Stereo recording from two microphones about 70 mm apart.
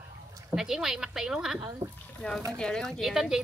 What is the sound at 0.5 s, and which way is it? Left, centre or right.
A woman's voice, centre.